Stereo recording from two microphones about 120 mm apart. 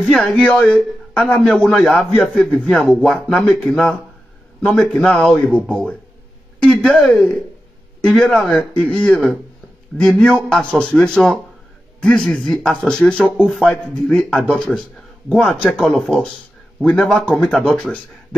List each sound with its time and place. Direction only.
0.0 s a man's voice: centre (ahead or behind)
2.2 s a man's voice: 5° right (ahead or behind)
16.8 s a man's voice: 5° left (ahead or behind)